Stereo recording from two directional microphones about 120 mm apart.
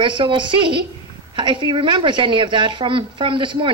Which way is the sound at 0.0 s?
45° right (ahead or behind).